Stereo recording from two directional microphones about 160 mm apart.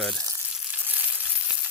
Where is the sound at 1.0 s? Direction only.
10° right (ahead or behind).